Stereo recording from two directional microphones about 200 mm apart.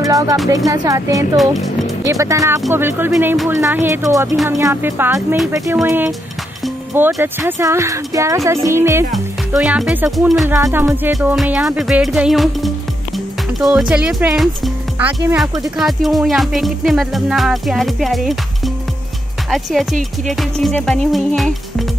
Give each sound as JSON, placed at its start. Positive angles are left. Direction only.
{"t": 0.0, "sound": "speech", "side_deg": -20}
{"t": 9.1, "sound": "music", "side_deg": -5}
{"t": 10.6, "sound": "speech", "side_deg": -10}
{"t": 15.6, "sound": "music", "side_deg": 0}